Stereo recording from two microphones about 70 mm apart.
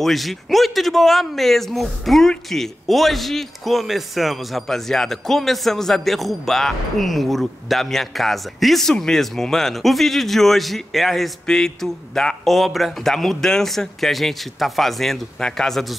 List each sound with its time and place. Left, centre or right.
0.0 s speech: centre